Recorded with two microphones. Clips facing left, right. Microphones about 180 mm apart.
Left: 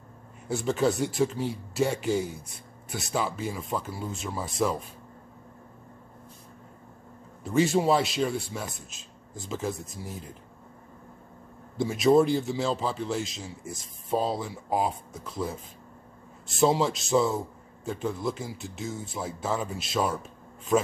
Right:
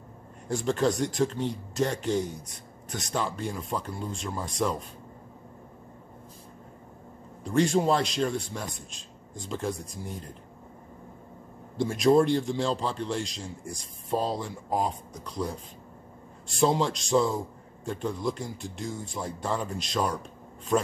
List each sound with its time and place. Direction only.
0.5 s speech: 5° left (ahead or behind)
7.4 s speech: 5° left (ahead or behind)
11.7 s speech: 5° left (ahead or behind)